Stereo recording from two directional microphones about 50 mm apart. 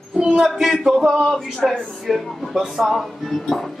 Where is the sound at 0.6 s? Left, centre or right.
Centre.